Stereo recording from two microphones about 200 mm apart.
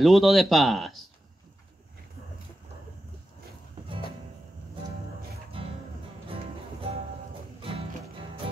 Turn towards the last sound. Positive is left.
turn(degrees=-25)  # may be behind; listen again after turning